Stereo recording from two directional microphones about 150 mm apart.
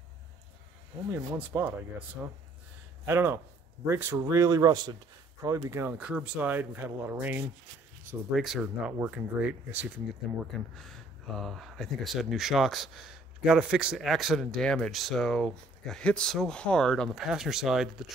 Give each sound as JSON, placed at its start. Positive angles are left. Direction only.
{"t": 1.1, "sound": "speech", "side_deg": -15}
{"t": 3.1, "sound": "speech", "side_deg": -15}
{"t": 8.4, "sound": "speech", "side_deg": 0}
{"t": 10.9, "sound": "speech", "side_deg": 0}